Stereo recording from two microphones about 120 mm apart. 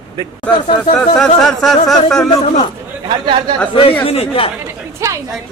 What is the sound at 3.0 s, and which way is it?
Speech, 35° right (ahead or behind).